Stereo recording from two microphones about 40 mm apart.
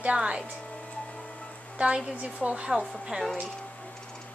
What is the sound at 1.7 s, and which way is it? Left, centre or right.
A woman's voice, right.